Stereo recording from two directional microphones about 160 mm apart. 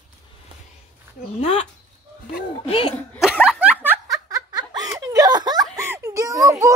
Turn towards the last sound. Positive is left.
turn(degrees=-20)  # may be behind; listen again after turning